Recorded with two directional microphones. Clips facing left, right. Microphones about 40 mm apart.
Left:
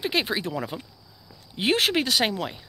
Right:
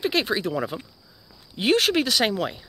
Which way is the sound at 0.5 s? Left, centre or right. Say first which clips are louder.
Right 3 dB; centre.